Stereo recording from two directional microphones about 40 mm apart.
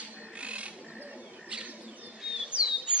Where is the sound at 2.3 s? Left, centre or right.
Right.